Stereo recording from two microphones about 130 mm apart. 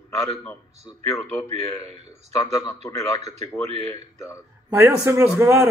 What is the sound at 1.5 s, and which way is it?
Speech, 55° right (ahead or behind).